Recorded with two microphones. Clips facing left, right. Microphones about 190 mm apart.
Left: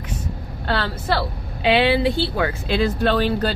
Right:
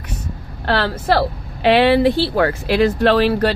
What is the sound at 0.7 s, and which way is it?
Speech, 85° right.